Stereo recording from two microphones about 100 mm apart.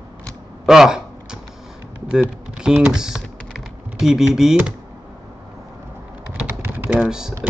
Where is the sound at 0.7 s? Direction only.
5° right (ahead or behind).